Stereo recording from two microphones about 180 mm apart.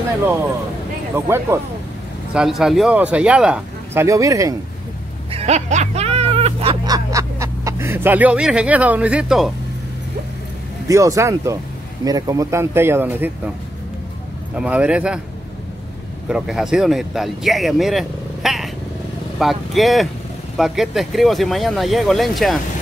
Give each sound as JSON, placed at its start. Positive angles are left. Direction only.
{"t": 1.1, "sound": "speech", "side_deg": -15}
{"t": 2.3, "sound": "speech", "side_deg": -5}
{"t": 5.3, "sound": "speech", "side_deg": -35}
{"t": 10.9, "sound": "speech", "side_deg": -15}
{"t": 14.6, "sound": "speech", "side_deg": -5}
{"t": 16.3, "sound": "speech", "side_deg": -5}